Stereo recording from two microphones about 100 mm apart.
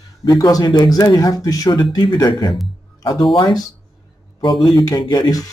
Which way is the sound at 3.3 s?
45° left (ahead or behind).